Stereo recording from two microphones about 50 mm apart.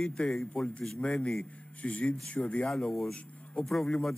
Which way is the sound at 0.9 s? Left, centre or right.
Centre.